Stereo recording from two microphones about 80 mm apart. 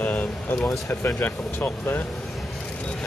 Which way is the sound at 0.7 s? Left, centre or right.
Left.